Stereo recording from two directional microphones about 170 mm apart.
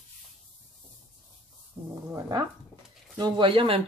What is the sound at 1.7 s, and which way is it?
Wild animals, 35° right (ahead or behind).